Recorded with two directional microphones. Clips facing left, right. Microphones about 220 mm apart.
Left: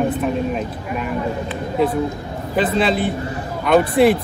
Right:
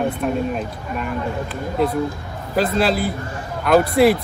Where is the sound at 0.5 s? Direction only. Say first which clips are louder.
Left 2 dB; centre (ahead or behind).